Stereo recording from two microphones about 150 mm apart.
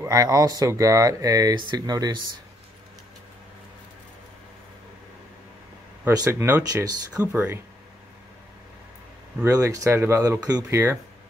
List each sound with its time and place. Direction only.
0.0 s speech: 25° right (ahead or behind)
6.0 s speech: 20° right (ahead or behind)
7.3 s speech: 15° right (ahead or behind)
9.4 s speech: 20° right (ahead or behind)